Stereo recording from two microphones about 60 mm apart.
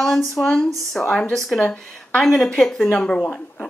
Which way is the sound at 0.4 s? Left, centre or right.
Left.